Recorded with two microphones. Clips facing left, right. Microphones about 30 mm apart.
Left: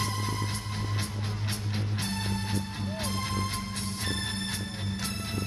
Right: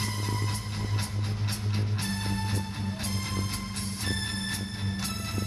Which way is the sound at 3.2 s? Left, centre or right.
Centre.